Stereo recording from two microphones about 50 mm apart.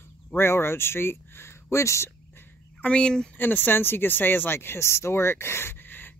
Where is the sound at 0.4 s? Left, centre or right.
Left.